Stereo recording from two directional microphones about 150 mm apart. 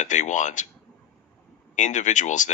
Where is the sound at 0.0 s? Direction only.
55° left (ahead or behind).